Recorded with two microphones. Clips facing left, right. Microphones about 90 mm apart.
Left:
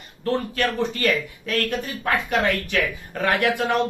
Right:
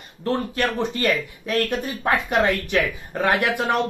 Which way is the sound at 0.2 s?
20° right (ahead or behind).